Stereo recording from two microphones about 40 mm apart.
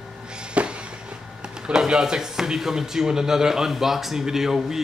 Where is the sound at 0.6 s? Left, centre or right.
Right.